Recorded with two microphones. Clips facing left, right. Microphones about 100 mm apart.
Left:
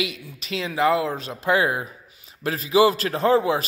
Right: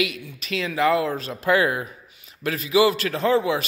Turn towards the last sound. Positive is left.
turn(degrees=35)  # may be behind; listen again after turning